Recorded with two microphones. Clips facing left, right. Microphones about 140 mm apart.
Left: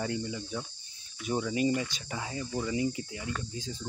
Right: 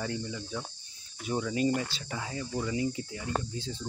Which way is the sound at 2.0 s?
25° left (ahead or behind).